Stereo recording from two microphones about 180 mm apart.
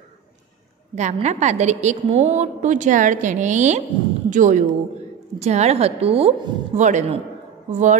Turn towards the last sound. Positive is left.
turn(degrees=-40)  # may be behind; listen again after turning